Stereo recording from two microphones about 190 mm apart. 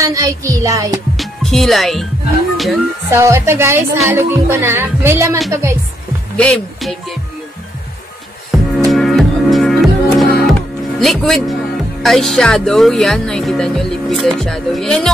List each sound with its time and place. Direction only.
0.0 s a woman's voice: 15° right (ahead or behind)
1.1 s music: centre (ahead or behind)
3.1 s a woman's voice: 15° right (ahead or behind)
6.3 s speech: 5° left (ahead or behind)
8.5 s music: centre (ahead or behind)
11.0 s speech: centre (ahead or behind)